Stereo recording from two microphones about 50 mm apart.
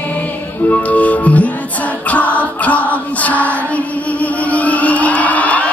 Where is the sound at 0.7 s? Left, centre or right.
Left.